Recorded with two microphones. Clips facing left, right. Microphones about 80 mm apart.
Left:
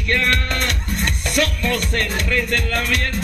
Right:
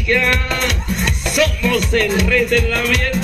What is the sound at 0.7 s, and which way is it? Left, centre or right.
Speech, left.